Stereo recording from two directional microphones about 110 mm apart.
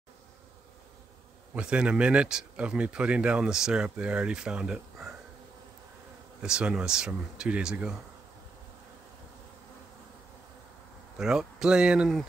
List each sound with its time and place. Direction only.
1.5 s speech: 10° right (ahead or behind)
6.4 s speech: 5° right (ahead or behind)
11.1 s speech: 5° right (ahead or behind)